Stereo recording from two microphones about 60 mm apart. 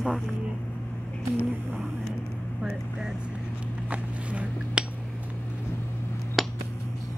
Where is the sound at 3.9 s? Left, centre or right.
Right.